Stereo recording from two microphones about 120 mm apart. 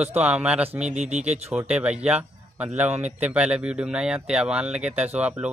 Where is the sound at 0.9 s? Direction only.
75° right (ahead or behind).